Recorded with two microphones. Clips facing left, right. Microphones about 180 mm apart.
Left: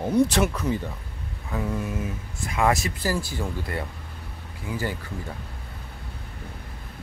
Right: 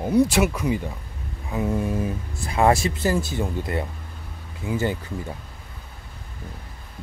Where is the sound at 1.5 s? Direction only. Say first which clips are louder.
Right 4 dB; 25° right (ahead or behind).